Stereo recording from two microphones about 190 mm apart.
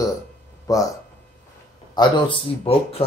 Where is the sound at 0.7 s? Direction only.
20° left (ahead or behind).